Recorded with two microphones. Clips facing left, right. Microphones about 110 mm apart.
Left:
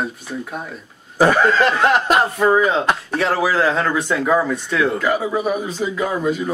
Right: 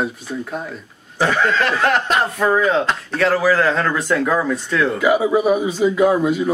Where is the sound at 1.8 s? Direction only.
10° left (ahead or behind).